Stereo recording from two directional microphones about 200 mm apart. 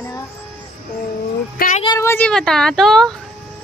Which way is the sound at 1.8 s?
15° left (ahead or behind).